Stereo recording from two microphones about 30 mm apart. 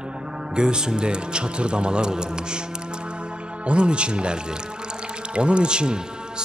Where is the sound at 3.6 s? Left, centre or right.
Right.